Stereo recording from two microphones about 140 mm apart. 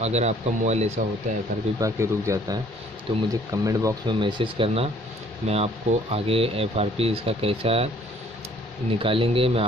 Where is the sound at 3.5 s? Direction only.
25° right (ahead or behind).